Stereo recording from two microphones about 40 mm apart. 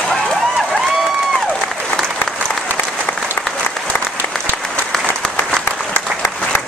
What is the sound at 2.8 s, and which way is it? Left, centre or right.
Applause, left.